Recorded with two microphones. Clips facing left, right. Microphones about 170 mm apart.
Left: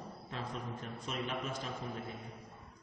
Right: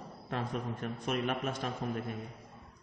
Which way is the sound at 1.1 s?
60° right (ahead or behind).